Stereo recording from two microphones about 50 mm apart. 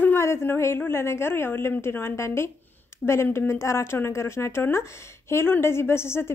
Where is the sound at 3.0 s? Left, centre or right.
Left.